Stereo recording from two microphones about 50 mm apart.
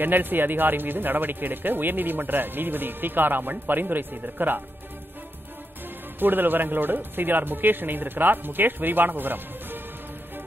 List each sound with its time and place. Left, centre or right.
0.0 s a man's voice: right
6.1 s a man's voice: right